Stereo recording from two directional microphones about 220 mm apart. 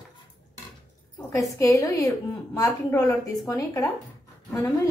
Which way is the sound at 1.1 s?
10° left (ahead or behind).